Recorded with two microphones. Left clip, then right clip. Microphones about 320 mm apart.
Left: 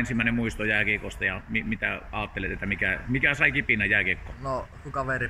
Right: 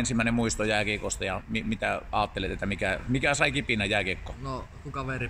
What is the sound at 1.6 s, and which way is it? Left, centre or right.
Speech, right.